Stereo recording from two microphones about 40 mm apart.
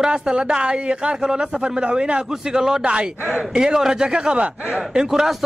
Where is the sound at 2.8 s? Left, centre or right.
Right.